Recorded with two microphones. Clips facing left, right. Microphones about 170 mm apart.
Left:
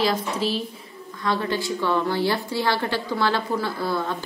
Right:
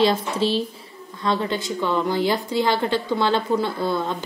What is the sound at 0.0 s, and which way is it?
A woman's voice, 25° right (ahead or behind).